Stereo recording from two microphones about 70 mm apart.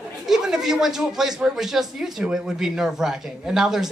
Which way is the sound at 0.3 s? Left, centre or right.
Centre.